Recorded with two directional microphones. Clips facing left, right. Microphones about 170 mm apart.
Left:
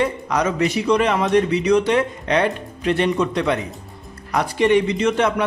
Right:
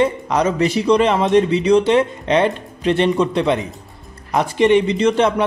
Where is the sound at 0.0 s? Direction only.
25° right (ahead or behind).